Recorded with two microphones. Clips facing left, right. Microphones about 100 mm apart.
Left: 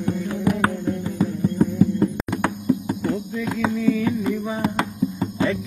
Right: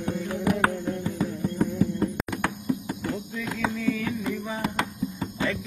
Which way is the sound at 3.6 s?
10° left (ahead or behind).